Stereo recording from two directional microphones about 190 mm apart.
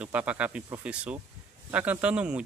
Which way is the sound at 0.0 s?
5° right (ahead or behind).